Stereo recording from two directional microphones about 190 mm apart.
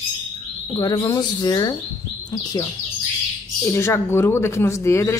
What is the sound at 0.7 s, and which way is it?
Speech, 20° left (ahead or behind).